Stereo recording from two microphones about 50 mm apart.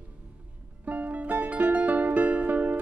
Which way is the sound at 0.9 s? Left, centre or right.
Right.